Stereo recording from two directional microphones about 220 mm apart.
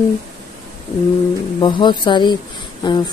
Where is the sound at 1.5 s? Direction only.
20° left (ahead or behind).